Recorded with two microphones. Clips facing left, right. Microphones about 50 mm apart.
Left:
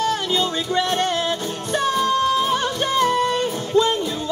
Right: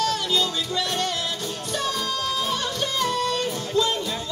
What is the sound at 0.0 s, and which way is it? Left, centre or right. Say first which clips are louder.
Music: left 3 dB; left.